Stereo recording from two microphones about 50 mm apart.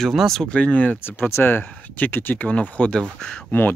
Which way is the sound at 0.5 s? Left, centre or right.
Left.